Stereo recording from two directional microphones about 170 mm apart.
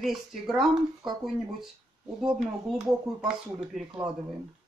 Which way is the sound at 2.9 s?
5° right (ahead or behind).